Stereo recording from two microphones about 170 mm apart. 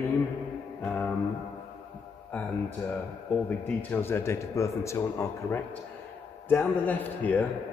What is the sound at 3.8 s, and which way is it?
A man's voice, 10° left (ahead or behind).